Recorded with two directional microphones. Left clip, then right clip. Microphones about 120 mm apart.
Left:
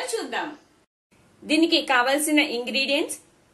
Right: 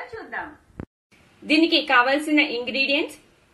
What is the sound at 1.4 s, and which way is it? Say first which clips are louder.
A woman's voice: right 2 dB; 25° right (ahead or behind).